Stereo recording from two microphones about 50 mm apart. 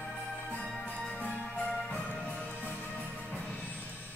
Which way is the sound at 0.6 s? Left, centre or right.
Centre.